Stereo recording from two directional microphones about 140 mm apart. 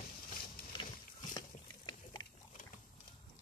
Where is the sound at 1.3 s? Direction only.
30° left (ahead or behind).